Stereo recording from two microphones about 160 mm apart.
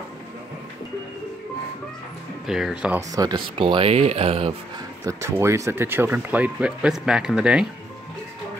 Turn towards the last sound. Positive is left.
turn(degrees=-5)  # may be behind; listen again after turning